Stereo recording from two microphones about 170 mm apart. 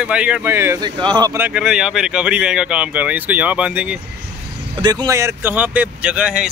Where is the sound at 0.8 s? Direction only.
25° right (ahead or behind).